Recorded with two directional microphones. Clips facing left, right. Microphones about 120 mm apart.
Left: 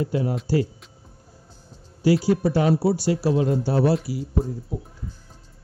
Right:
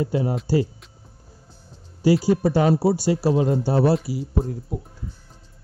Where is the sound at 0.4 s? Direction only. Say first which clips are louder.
Right 1 dB; centre (ahead or behind).